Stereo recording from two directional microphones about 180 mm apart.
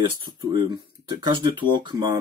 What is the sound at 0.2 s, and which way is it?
Speech, 25° right (ahead or behind).